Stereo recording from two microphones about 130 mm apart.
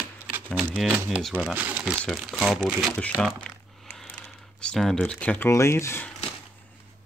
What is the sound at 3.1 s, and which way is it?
Speech, 15° right (ahead or behind).